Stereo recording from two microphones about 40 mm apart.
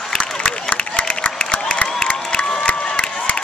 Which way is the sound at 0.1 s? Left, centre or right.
Centre.